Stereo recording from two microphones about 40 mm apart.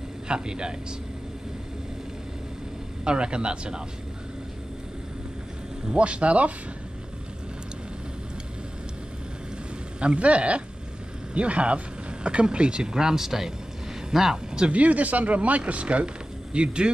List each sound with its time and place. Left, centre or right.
0.3 s speech: right
3.1 s speech: right
5.9 s speech: right
9.9 s speech: right
12.9 s speech: centre
14.7 s speech: right